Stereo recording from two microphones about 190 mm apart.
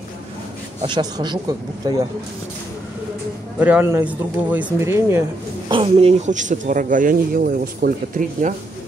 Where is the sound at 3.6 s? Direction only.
10° right (ahead or behind).